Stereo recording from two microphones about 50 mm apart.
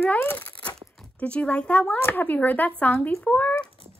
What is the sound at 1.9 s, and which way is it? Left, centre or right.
Speech, left.